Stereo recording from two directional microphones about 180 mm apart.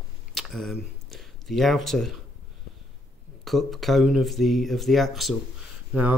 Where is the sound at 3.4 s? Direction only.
Centre (ahead or behind).